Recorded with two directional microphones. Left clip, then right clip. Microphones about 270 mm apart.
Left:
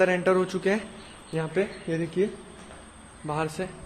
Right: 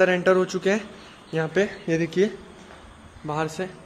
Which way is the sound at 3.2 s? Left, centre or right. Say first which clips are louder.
Right 2 dB; centre.